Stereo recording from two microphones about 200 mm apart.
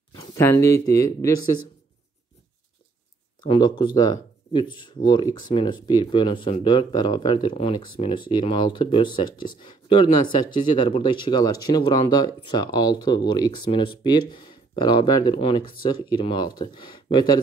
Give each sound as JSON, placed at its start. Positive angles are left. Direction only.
{"t": 0.2, "sound": "speech", "side_deg": 15}
{"t": 3.3, "sound": "speech", "side_deg": 20}